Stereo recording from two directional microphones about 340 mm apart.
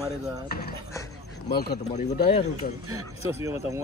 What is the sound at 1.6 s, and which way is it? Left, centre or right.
Speech, left.